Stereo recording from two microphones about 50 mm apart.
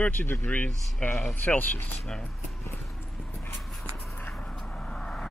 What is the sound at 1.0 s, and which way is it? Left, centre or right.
Speech, left.